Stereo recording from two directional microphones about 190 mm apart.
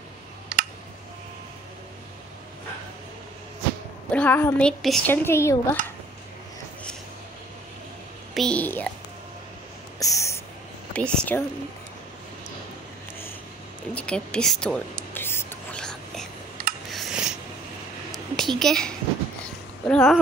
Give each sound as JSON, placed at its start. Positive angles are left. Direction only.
{"t": 4.1, "sound": "speech", "side_deg": 10}
{"t": 8.4, "sound": "speech", "side_deg": 5}
{"t": 9.9, "sound": "snort", "side_deg": 15}
{"t": 10.9, "sound": "speech", "side_deg": 5}
{"t": 13.9, "sound": "a sound", "side_deg": 5}
{"t": 16.9, "sound": "filing", "side_deg": 0}
{"t": 18.1, "sound": "a sound", "side_deg": 0}
{"t": 18.6, "sound": "speech", "side_deg": 5}
{"t": 19.4, "sound": "a sound", "side_deg": 5}